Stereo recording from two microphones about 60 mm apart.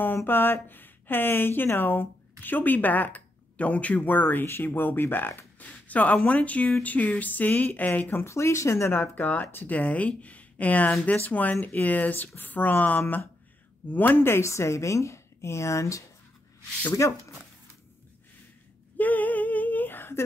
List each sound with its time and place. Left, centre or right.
0.3 s a woman's voice: left
5.7 s speech: left
8.3 s a woman's voice: left
17.0 s a woman's voice: left
18.9 s female singing: left